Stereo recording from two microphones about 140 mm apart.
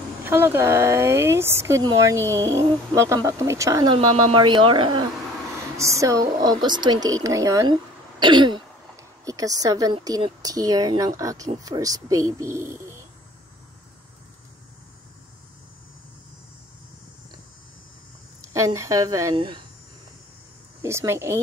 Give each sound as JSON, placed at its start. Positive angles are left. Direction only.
{"t": 0.2, "sound": "speech", "side_deg": -15}
{"t": 3.9, "sound": "speech", "side_deg": -40}
{"t": 5.8, "sound": "speech", "side_deg": -20}
{"t": 8.2, "sound": "speech", "side_deg": -35}
{"t": 18.4, "sound": "a woman's voice", "side_deg": -20}
{"t": 19.3, "sound": "speech", "side_deg": -35}
{"t": 20.8, "sound": "speech", "side_deg": -20}